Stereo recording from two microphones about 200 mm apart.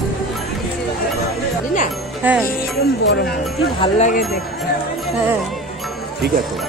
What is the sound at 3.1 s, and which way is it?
Speech, 55° left (ahead or behind).